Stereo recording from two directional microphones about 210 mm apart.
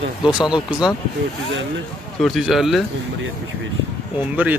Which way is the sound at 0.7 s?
5° right (ahead or behind).